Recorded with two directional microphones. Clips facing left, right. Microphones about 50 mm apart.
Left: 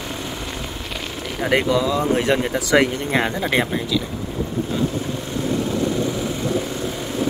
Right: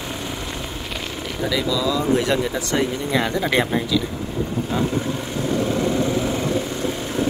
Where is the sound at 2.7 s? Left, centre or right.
Left.